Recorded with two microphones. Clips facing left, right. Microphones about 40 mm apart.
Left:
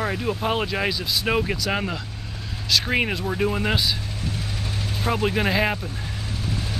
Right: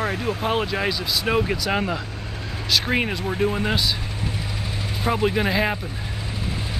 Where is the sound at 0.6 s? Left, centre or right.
Centre.